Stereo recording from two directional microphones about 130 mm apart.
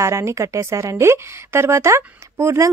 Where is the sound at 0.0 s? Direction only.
20° right (ahead or behind).